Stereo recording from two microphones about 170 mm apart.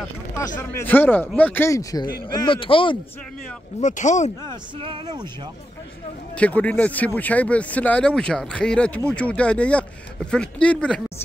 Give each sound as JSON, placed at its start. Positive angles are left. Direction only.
{"t": 0.6, "sound": "speech", "side_deg": 15}
{"t": 3.8, "sound": "speech", "side_deg": 45}
{"t": 4.5, "sound": "speech", "side_deg": -30}
{"t": 6.3, "sound": "speech", "side_deg": 10}